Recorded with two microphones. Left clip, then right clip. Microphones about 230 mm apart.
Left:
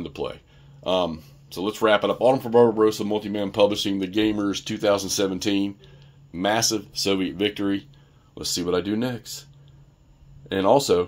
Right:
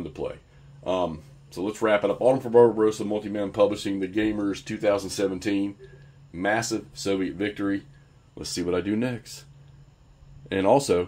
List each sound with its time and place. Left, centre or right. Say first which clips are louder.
0.0 s a sound: left 2 dB; left
0.8 s speech: left 3 dB; left
8.4 s speech: left 3 dB; centre
10.5 s speech: left 2 dB; centre